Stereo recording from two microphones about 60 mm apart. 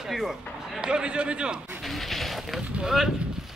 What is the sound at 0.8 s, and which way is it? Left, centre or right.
Speech, centre.